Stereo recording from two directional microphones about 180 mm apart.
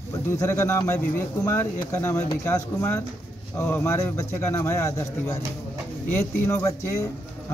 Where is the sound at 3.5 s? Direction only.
15° left (ahead or behind).